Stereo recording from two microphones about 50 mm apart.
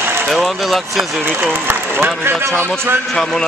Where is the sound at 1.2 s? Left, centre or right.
Right.